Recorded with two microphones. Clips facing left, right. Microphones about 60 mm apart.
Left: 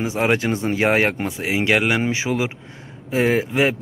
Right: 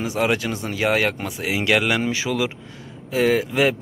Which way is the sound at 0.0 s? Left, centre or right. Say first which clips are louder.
Left 1 dB; left.